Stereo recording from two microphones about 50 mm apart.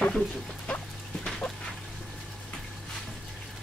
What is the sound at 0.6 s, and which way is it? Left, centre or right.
Music, left.